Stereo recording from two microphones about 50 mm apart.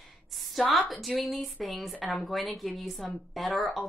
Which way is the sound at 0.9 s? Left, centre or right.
Centre.